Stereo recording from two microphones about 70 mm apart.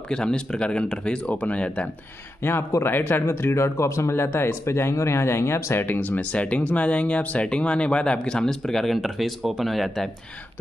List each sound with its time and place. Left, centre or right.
0.1 s speech: centre
2.4 s speech: left; by 10.1 s centre